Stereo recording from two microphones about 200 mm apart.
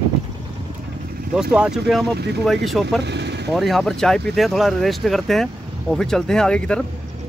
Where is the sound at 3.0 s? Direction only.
55° right (ahead or behind).